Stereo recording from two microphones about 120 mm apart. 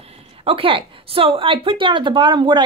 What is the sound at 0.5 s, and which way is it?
Speech, 45° right (ahead or behind).